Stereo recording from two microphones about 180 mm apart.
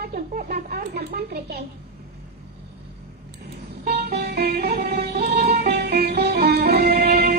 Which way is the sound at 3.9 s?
60° right (ahead or behind).